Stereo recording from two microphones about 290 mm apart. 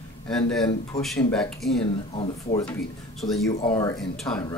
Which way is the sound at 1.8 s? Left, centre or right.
Centre.